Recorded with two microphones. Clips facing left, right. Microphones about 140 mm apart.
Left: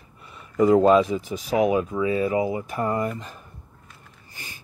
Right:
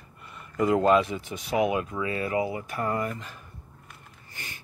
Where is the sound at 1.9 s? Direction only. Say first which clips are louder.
Left 6 dB; 15° left (ahead or behind).